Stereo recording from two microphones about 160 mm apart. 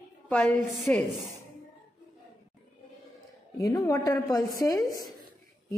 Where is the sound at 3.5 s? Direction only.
20° left (ahead or behind).